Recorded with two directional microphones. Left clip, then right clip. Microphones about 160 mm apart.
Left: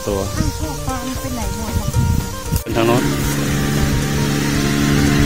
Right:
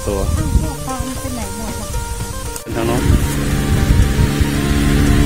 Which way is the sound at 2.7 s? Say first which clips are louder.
Left 3 dB; 25° left (ahead or behind).